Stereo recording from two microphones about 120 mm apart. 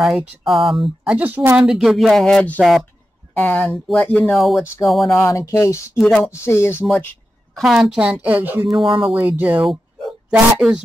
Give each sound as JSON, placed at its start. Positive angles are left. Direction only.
{"t": 0.5, "sound": "speech", "side_deg": 0}
{"t": 5.0, "sound": "speech", "side_deg": 25}
{"t": 5.9, "sound": "speech", "side_deg": 0}
{"t": 6.4, "sound": "speech", "side_deg": 20}
{"t": 7.5, "sound": "a woman's voice", "side_deg": -5}
{"t": 8.6, "sound": "speech", "side_deg": 0}
{"t": 9.1, "sound": "a woman's voice", "side_deg": -15}
{"t": 10.3, "sound": "speech", "side_deg": -5}